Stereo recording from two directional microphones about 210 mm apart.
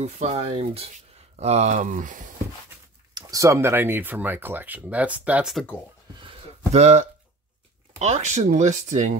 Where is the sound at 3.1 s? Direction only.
15° right (ahead or behind); by 5.7 s centre (ahead or behind).